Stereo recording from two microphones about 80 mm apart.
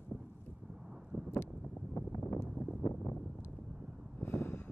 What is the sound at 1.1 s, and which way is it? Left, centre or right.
Vehicle, centre.